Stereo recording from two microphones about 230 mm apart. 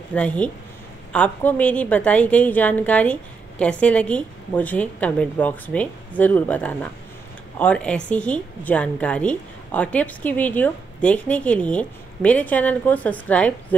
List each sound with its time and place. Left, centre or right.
0.1 s a woman's voice: centre